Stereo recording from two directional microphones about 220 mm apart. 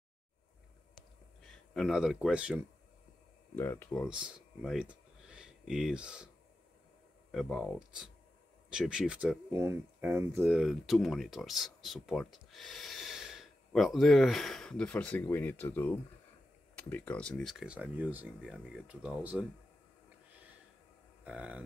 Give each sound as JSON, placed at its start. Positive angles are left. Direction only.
{"t": 1.7, "sound": "speech", "side_deg": 0}
{"t": 3.5, "sound": "speech", "side_deg": 10}
{"t": 4.1, "sound": "speech", "side_deg": -5}
{"t": 21.2, "sound": "a sound", "side_deg": -5}